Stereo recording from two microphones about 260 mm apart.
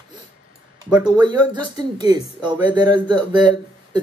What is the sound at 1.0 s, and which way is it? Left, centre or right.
Speech, centre.